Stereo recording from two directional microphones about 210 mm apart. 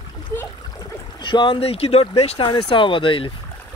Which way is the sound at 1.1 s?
20° left (ahead or behind).